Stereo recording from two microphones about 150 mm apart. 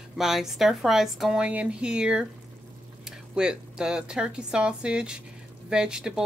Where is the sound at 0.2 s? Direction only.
Centre (ahead or behind).